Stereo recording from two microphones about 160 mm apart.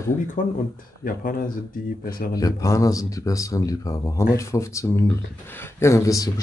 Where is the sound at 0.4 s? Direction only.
55° left (ahead or behind).